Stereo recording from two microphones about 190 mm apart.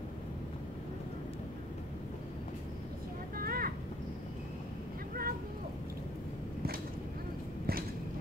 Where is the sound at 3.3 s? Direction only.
50° right (ahead or behind).